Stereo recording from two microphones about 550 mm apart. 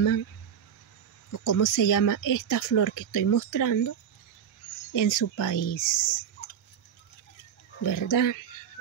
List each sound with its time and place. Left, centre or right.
1.3 s speech: left
4.9 s speech: left
7.8 s speech: left